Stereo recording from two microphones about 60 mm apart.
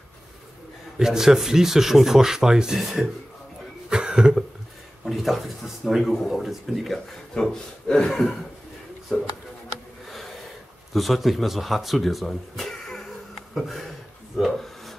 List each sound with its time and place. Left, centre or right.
0.9 s speech: centre
3.9 s cough: centre
5.0 s speech: centre
8.1 s speech: centre
9.1 s speech: centre
10.9 s speech: centre
14.3 s rub: centre